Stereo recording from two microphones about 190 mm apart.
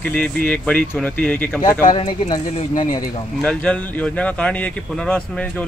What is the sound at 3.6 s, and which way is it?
Speech, 5° left (ahead or behind).